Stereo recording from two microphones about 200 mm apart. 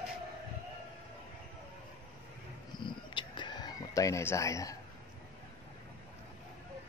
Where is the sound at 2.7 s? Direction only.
25° left (ahead or behind).